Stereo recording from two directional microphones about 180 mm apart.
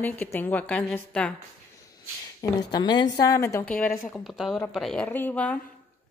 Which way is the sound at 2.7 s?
25° left (ahead or behind).